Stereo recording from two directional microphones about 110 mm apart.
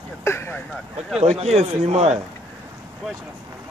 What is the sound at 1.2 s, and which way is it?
Speech, 75° right (ahead or behind).